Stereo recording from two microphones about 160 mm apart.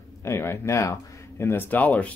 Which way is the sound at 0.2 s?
15° left (ahead or behind).